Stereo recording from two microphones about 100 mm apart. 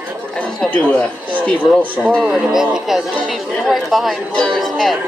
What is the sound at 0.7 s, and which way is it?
Speech, 15° left (ahead or behind).